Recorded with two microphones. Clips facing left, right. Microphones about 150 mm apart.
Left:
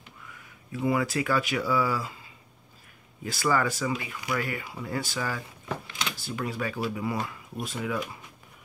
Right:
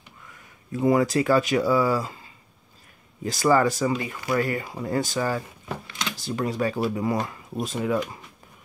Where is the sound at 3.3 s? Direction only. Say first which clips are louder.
Right 6 dB; 40° right (ahead or behind).